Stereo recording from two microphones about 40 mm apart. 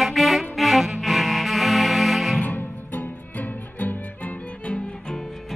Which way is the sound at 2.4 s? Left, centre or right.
Left.